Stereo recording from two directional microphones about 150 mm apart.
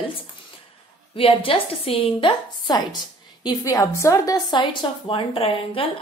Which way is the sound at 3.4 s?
20° left (ahead or behind).